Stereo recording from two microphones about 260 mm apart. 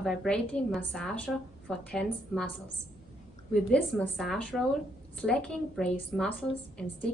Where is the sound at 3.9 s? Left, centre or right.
Centre.